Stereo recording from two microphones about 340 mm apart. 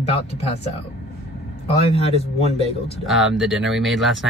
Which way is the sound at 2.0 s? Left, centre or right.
Centre.